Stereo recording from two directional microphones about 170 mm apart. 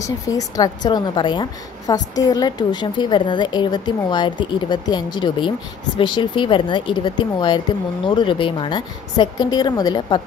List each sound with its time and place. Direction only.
0.0 s speech: 20° left (ahead or behind)